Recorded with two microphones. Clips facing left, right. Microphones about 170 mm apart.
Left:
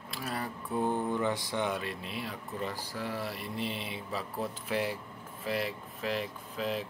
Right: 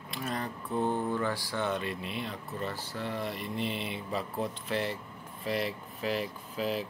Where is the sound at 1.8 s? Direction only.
Centre (ahead or behind).